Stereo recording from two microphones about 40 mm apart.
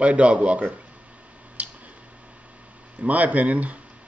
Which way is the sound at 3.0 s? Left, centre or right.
Right.